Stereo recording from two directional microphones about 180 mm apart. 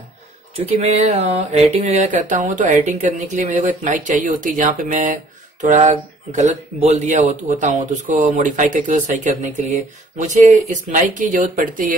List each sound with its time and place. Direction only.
0.6 s speech: 35° right (ahead or behind)